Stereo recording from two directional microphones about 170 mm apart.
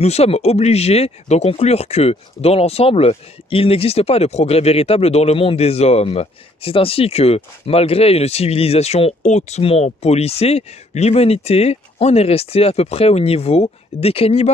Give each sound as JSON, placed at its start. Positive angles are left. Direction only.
{"t": 0.0, "sound": "speech", "side_deg": 40}